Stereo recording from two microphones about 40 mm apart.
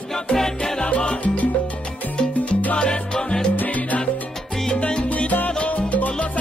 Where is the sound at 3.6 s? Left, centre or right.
Left.